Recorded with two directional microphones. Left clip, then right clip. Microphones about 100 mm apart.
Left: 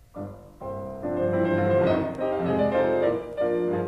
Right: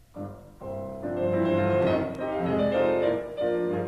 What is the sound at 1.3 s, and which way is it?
Music, 20° right (ahead or behind).